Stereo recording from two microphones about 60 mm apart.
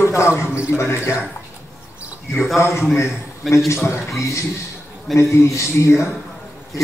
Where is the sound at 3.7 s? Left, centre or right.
Left.